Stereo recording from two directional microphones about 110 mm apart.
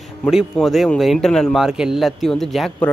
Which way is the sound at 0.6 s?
5° left (ahead or behind).